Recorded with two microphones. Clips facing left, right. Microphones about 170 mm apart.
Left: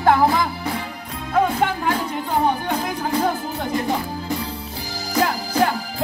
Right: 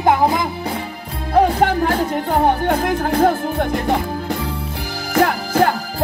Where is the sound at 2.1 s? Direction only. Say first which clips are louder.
Right 4 dB; 55° right (ahead or behind).